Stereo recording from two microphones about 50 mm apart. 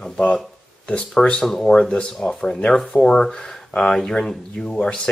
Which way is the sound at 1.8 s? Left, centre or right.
Centre.